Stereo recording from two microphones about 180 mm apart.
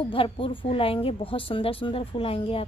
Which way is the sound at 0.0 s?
30° left (ahead or behind).